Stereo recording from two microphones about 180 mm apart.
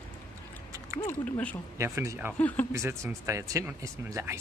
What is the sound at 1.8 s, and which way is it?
Speech, 15° right (ahead or behind).